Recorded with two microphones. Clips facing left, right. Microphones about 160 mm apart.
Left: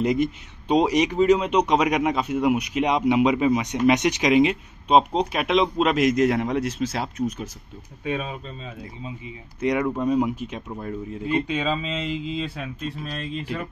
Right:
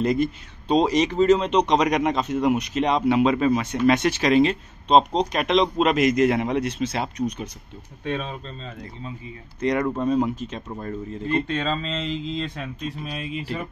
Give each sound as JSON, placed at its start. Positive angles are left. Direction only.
{"t": 0.0, "sound": "speech", "side_deg": 15}